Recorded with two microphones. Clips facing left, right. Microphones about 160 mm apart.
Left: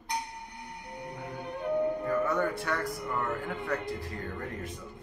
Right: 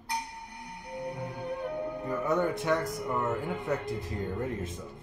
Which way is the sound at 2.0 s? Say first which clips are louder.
Even; 20° right (ahead or behind).